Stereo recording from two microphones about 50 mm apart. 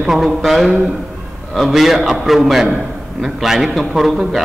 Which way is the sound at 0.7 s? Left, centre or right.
Right.